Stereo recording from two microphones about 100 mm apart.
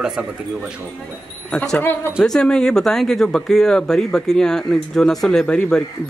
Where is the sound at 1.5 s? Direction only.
10° left (ahead or behind).